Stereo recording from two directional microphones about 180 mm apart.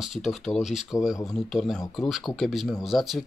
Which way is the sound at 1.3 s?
Centre (ahead or behind).